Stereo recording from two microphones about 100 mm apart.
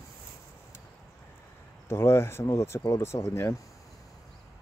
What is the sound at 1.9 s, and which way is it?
Speech, 25° left (ahead or behind).